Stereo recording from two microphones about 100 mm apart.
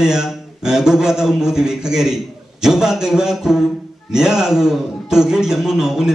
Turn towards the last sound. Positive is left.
turn(degrees=-5)  # may be behind; listen again after turning